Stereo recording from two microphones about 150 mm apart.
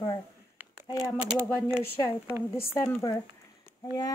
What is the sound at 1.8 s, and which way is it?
A woman's voice, 15° left (ahead or behind).